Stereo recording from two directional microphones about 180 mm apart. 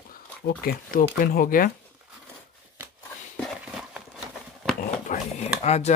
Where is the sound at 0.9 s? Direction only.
50° left (ahead or behind).